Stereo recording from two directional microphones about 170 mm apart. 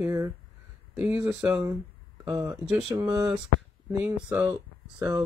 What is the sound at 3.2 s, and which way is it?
Speech, 5° right (ahead or behind).